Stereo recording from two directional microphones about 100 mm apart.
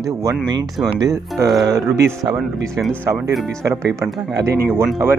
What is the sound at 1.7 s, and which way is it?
Speech, 35° right (ahead or behind).